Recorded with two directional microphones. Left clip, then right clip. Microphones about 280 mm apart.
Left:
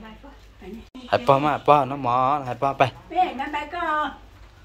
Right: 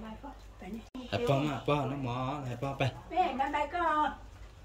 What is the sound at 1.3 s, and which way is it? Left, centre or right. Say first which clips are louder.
Speech: left 15 dB; centre.